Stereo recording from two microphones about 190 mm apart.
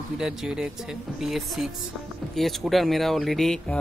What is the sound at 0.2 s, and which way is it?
Speech, 5° right (ahead or behind).